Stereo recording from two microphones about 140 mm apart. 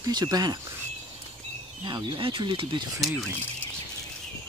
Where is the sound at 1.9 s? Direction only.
30° right (ahead or behind).